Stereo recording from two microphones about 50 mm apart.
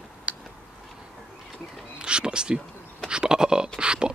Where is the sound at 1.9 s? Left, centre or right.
Centre.